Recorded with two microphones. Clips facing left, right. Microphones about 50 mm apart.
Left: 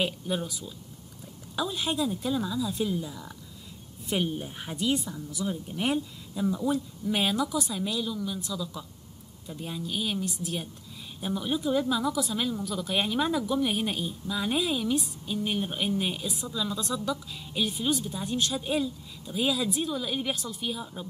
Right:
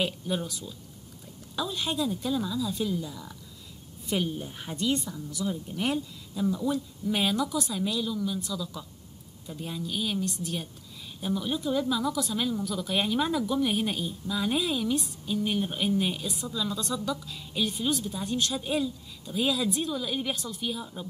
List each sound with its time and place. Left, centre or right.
0.0 s a woman's voice: centre
4.6 s speech: centre